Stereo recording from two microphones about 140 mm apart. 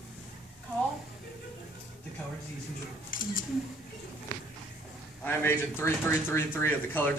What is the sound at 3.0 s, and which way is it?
Speech, 80° left.